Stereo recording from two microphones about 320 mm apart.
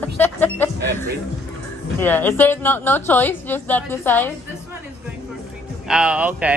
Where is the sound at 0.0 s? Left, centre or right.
Centre.